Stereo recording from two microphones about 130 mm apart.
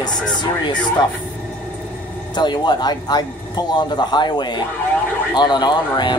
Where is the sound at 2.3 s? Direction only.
35° left (ahead or behind).